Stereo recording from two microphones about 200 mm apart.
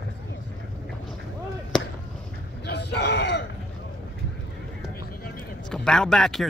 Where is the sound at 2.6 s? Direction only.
55° left (ahead or behind).